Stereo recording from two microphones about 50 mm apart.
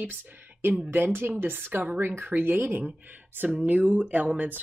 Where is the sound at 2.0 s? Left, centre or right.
Right.